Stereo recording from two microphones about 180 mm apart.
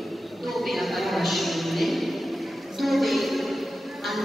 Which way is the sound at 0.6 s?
Centre (ahead or behind).